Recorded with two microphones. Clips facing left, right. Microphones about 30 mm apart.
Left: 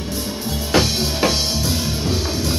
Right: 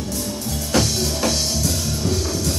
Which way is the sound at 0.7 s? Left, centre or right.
Left.